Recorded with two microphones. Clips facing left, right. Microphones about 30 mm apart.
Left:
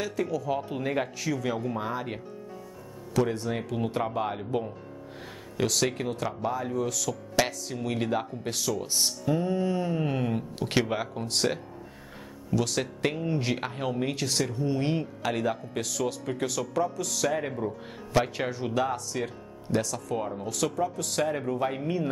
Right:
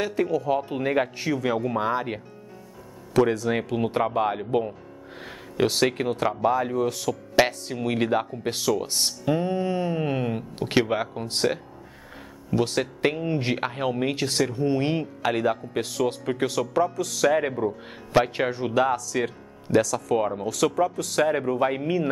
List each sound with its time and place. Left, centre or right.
0.0 s speech: right
0.5 s speech: right
1.1 s speech: right
3.1 s a sound: right
3.4 s speech: right
5.2 s a sound: right
5.7 s speech: right
7.4 s a sound: right
7.8 s speech: right; by 11.6 s centre
12.4 s speech: right
17.3 s a man's voice: right
18.5 s speech: right
20.7 s a man's voice: right
21.2 s speech: right